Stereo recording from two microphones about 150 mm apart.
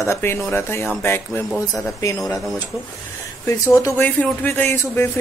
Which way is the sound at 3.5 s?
20° left (ahead or behind).